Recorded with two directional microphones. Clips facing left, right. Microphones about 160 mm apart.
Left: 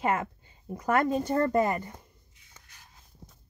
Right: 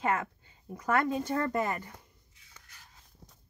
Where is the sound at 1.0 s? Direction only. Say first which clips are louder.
Left 4 dB; 40° left (ahead or behind).